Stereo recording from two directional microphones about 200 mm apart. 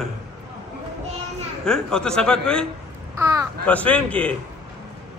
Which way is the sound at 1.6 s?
5° left (ahead or behind).